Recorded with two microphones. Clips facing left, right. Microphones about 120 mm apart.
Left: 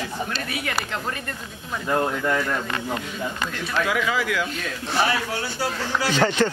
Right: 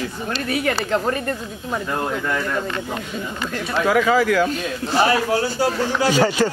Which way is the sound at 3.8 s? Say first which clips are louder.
Right 8 dB; 40° right (ahead or behind).